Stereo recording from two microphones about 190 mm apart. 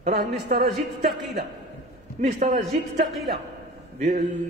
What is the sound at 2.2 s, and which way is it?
A man's voice, 40° right (ahead or behind).